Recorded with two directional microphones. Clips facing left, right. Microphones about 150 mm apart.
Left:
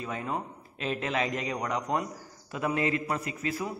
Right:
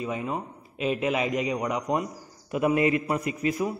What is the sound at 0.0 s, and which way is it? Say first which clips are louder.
A man's voice: right 3 dB; 5° right (ahead or behind).